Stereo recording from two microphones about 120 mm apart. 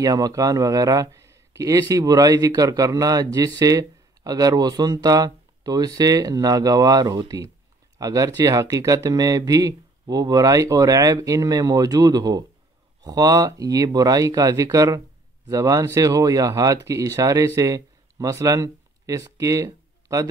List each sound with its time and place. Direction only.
0.0 s a man's voice: 30° right (ahead or behind)